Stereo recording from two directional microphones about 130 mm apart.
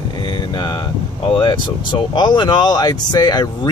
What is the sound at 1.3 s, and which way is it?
Speech, 35° left (ahead or behind).